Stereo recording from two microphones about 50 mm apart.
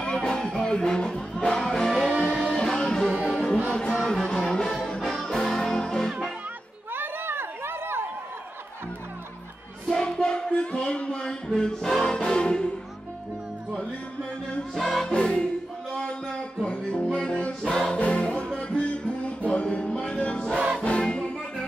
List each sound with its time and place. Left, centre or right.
0.0 s music: centre
6.9 s chatter: right
10.0 s music: centre
14.7 s music: centre
15.0 s music: centre
20.5 s music: right
20.8 s music: left